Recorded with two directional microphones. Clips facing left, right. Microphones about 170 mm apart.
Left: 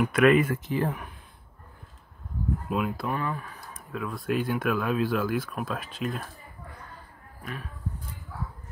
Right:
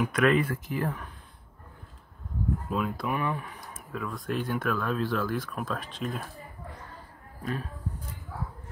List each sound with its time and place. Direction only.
0.0 s speech: 10° left (ahead or behind)
0.7 s speech: 25° left (ahead or behind)
2.7 s speech: 5° left (ahead or behind)
3.1 s speech: 20° right (ahead or behind)
3.7 s speech: centre (ahead or behind)
7.4 s speech: 35° right (ahead or behind)